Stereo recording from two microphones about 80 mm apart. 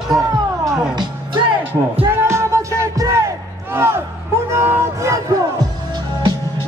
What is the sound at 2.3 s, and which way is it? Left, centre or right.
Music, right.